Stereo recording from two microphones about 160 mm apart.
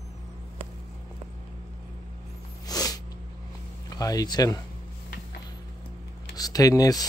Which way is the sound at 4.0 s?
25° left (ahead or behind).